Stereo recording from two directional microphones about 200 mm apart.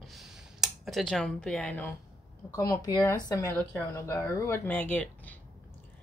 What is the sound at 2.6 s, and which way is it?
Speech, 15° left (ahead or behind).